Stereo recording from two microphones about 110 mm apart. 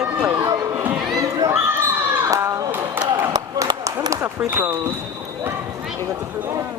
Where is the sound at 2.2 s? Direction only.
30° right (ahead or behind).